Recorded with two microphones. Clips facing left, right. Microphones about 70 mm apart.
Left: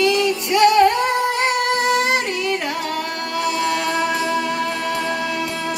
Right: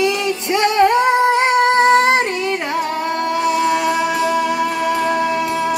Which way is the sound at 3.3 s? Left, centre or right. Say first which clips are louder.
Right 3 dB; centre.